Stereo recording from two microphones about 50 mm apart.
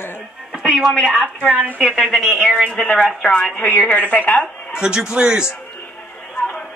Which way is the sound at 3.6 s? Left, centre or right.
Left.